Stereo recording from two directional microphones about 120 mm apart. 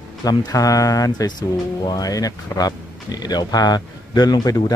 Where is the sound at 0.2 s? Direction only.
35° left (ahead or behind).